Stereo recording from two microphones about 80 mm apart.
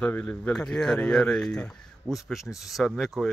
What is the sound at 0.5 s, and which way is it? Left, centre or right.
Speech, centre.